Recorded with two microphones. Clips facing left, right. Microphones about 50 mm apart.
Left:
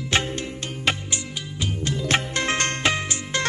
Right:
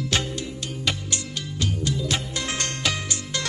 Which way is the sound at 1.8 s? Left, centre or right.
Left.